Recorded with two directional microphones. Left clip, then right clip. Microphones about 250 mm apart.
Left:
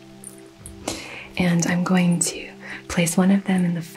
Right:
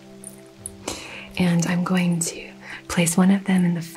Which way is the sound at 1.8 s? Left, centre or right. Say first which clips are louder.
Left 2 dB; left.